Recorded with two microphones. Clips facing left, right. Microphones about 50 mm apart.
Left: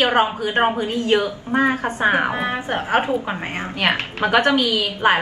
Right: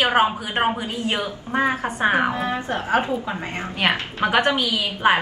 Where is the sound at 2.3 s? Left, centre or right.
Left.